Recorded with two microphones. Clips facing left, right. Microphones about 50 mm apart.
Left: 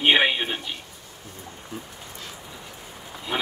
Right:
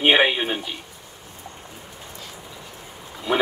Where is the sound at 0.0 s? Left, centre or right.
Centre.